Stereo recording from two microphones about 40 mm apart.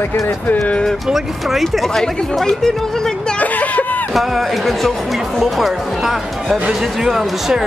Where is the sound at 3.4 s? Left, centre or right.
Left.